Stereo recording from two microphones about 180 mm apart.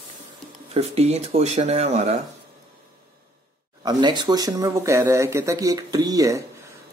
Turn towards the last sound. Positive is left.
turn(degrees=-20)  # may be behind; listen again after turning